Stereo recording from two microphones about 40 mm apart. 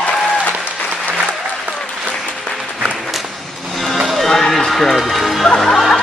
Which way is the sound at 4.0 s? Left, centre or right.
Centre.